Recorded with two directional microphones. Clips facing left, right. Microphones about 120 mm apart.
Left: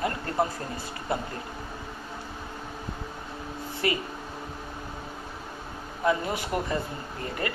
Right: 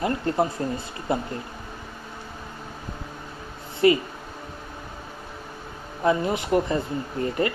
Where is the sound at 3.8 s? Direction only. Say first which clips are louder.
Right 10 dB; 25° right (ahead or behind).